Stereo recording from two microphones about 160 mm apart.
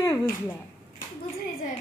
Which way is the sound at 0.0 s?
20° left (ahead or behind).